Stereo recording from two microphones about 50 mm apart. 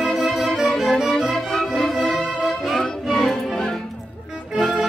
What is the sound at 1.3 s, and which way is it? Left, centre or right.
Music, centre.